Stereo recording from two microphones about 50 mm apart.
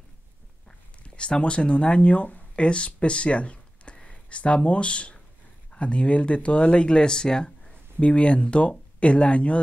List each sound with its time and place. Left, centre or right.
0.7 s speech: left
8.0 s speech: left